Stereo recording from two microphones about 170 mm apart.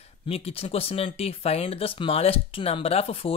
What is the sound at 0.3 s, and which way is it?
Speech, 35° left (ahead or behind).